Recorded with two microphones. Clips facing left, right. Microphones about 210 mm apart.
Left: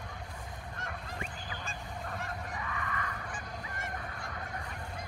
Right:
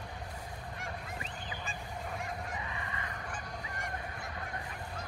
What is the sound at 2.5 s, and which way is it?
Goose, 20° right (ahead or behind).